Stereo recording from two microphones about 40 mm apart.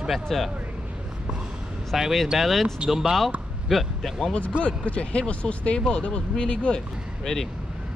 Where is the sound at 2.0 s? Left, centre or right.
Centre.